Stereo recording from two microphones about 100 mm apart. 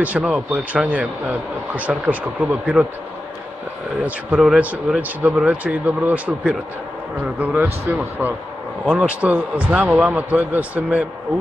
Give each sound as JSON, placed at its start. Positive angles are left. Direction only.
{"t": 0.0, "sound": "a man's voice", "side_deg": -15}
{"t": 4.0, "sound": "a man's voice", "side_deg": -15}
{"t": 8.8, "sound": "a man's voice", "side_deg": -10}